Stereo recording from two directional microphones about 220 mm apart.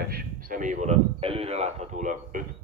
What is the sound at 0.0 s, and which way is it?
A man's voice, 40° right (ahead or behind).